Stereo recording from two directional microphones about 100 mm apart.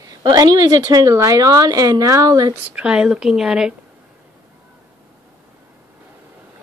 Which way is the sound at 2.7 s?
10° right (ahead or behind).